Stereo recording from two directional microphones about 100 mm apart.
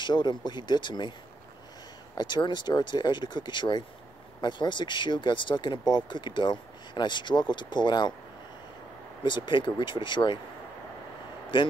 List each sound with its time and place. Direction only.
0.0 s speech: 45° left (ahead or behind)
2.1 s speech: 50° left (ahead or behind)
9.2 s speech: 50° left (ahead or behind)
11.5 s speech: 55° left (ahead or behind)